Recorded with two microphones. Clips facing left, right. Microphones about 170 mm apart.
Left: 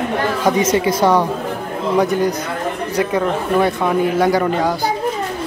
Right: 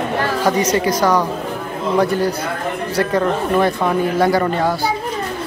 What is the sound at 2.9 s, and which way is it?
Speech, 10° left (ahead or behind).